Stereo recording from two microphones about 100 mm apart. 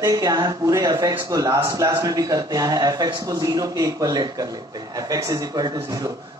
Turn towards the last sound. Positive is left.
turn(degrees=-40)  # may be behind; listen again after turning